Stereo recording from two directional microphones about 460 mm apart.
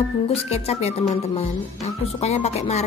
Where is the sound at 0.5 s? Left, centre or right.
Centre.